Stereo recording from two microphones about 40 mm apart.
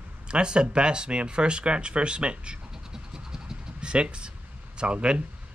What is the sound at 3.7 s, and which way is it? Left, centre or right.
Speech, right.